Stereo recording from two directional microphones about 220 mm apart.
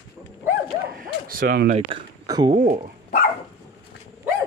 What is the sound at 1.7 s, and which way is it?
Speech, 25° right (ahead or behind).